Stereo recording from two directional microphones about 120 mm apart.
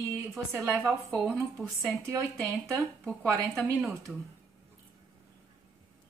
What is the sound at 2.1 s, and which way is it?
Speech, 25° right (ahead or behind).